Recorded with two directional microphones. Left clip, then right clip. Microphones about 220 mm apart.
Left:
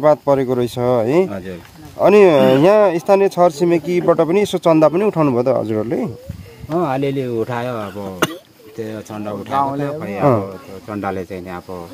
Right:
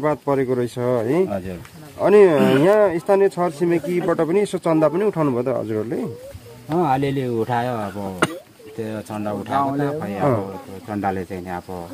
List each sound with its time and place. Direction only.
0.0 s speech: 50° left (ahead or behind)
6.7 s speech: 15° left (ahead or behind)